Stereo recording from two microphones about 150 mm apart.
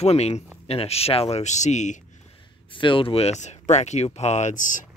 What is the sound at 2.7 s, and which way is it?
Speech, 35° left (ahead or behind).